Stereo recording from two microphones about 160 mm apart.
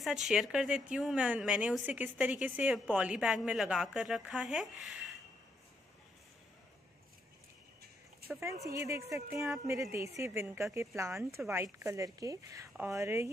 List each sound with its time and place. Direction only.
0.0 s speech: centre (ahead or behind)
8.6 s a woman's voice: 20° right (ahead or behind)